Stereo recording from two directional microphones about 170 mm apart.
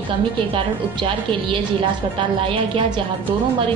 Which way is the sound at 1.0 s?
30° right (ahead or behind).